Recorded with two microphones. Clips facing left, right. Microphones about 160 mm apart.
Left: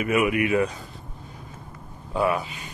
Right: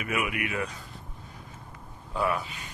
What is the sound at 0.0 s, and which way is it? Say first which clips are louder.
Speech: left 9 dB; 30° left (ahead or behind).